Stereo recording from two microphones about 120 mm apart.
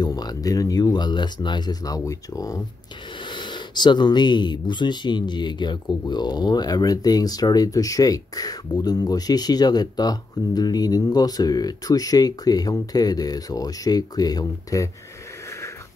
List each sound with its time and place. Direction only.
0.0 s speech: 35° left (ahead or behind)
3.3 s speech: 40° left (ahead or behind)